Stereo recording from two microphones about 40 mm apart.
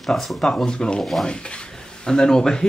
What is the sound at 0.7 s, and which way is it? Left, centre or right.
Speech, left.